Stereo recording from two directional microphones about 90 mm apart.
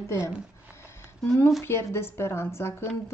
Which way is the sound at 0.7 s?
30° left (ahead or behind).